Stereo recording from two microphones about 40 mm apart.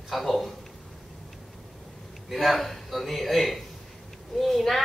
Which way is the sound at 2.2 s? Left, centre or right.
Centre.